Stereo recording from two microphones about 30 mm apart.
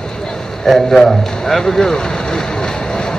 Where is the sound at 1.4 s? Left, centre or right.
Centre.